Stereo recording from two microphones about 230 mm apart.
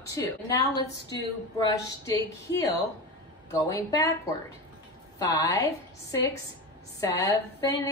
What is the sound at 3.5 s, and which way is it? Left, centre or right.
Speech, centre.